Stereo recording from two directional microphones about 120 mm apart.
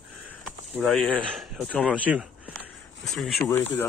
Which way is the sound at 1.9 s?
10° right (ahead or behind).